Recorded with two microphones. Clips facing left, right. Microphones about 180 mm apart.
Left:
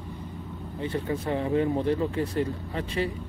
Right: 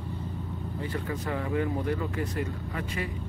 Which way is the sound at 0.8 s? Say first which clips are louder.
Left 5 dB; 25° left (ahead or behind).